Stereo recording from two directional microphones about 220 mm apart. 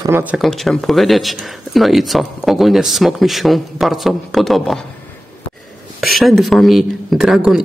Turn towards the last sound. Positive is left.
turn(degrees=-5)  # may be behind; listen again after turning